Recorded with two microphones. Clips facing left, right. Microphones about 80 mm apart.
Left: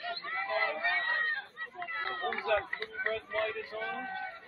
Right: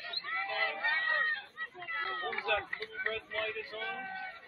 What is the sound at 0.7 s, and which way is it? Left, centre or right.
Crowd, centre.